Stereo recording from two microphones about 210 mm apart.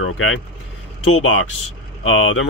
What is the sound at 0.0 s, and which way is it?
Speech, 80° left.